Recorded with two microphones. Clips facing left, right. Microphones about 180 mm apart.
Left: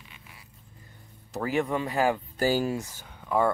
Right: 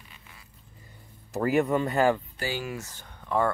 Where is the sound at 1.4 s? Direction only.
Centre (ahead or behind).